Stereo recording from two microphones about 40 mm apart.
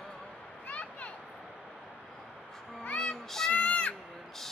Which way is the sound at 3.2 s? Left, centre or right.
Centre.